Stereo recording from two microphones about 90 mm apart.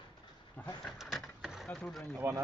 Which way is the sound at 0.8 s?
Centre (ahead or behind).